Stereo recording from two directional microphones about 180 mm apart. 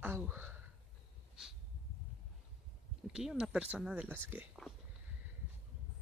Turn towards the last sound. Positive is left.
turn(degrees=-10)  # may be behind; listen again after turning